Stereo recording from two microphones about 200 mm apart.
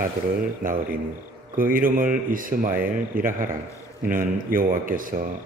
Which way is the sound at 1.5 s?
45° right (ahead or behind).